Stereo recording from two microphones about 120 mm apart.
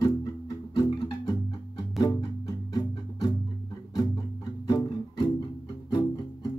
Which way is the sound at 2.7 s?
30° left (ahead or behind).